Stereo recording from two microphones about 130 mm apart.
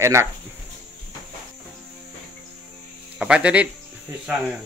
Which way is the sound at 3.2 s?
10° right (ahead or behind).